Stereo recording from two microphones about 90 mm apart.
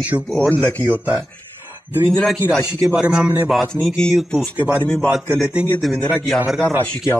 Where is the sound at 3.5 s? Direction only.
5° left (ahead or behind).